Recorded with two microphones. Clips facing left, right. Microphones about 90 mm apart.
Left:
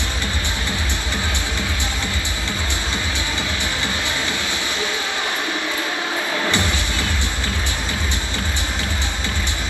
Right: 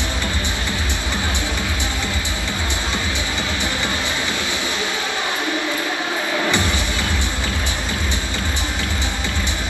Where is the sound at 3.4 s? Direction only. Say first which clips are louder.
Right 1 dB; 15° right (ahead or behind).